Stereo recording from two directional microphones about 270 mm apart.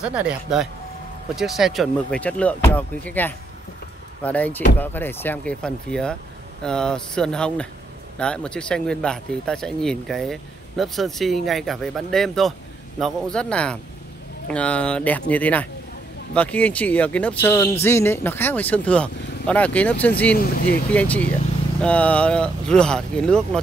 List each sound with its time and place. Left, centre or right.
0.0 s speech: centre
20.3 s speech: left
20.9 s speech: centre